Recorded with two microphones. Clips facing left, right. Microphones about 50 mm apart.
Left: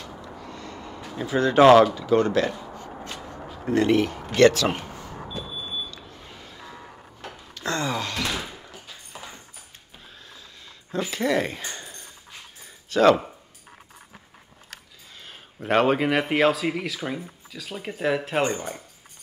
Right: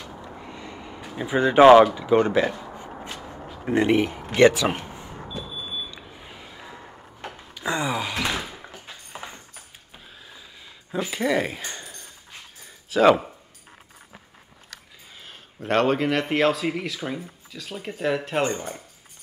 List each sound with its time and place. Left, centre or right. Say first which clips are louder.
0.4 s speech: even; centre
4.3 s a sound: even; centre
5.4 s vehicle: even; centre
5.9 s a sound: right 1 dB; centre
7.2 s door: right 1 dB; centre
9.1 s a sound: right 3 dB; right
10.9 s speech: even; centre
12.9 s speech: right 1 dB; centre
15.2 s speech: left 1 dB; centre